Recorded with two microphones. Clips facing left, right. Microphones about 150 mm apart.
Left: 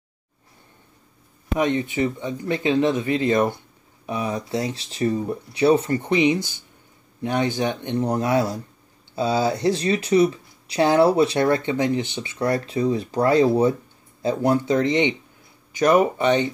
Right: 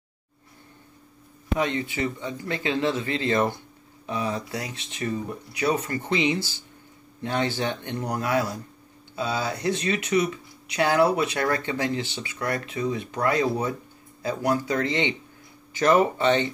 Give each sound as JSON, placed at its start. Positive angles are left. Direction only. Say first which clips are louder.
{"t": 1.6, "sound": "speech", "louder": "left 5 dB", "side_deg": 20}